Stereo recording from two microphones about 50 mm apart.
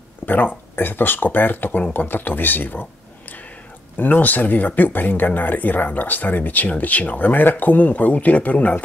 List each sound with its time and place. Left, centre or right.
0.2 s speech: left